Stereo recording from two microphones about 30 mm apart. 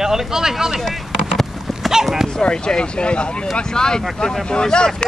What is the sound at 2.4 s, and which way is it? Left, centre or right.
Speech, left.